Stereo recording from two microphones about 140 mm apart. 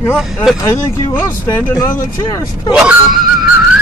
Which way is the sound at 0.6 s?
15° left (ahead or behind).